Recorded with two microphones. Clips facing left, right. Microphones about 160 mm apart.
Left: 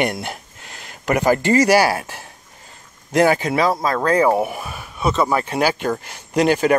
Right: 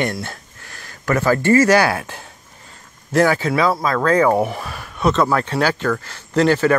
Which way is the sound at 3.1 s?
20° left (ahead or behind).